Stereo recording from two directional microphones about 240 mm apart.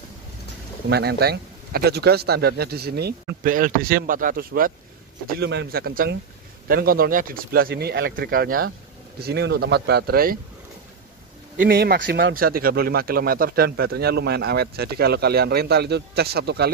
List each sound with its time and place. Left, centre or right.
0.8 s speech: right
11.6 s speech: right